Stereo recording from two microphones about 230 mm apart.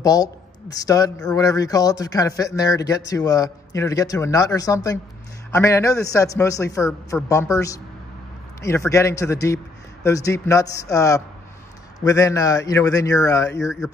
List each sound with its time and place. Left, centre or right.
0.0 s a man's voice: centre